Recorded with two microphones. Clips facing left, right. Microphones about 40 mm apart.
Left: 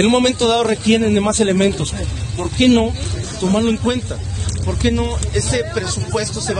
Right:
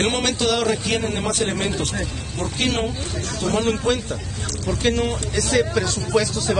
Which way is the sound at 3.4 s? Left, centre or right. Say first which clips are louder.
Left 5 dB; centre.